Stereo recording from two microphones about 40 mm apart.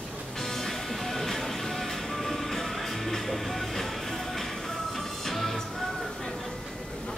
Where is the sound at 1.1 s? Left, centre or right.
Centre.